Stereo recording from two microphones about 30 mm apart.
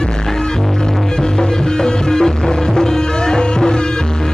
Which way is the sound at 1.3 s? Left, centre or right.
Left.